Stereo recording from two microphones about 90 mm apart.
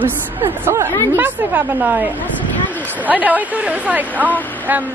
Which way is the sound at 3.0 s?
20° right (ahead or behind).